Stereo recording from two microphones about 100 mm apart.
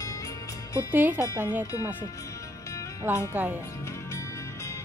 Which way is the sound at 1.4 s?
20° right (ahead or behind).